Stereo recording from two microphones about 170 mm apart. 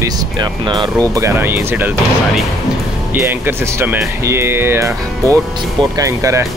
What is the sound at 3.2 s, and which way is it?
Speech, 15° right (ahead or behind).